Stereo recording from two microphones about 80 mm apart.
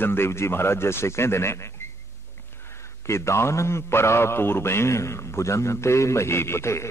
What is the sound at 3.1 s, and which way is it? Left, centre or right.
A man's voice, left.